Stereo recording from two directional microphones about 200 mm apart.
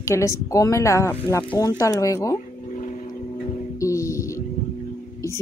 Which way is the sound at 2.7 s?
40° left (ahead or behind).